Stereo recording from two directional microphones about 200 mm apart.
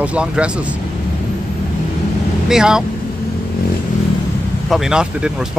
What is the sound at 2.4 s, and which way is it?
Speech, 5° right (ahead or behind).